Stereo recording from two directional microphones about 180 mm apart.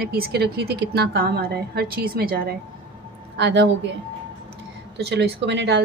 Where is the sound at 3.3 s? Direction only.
70° right (ahead or behind).